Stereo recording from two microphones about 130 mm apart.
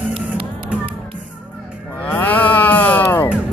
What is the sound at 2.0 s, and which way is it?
Livestock, 15° left (ahead or behind).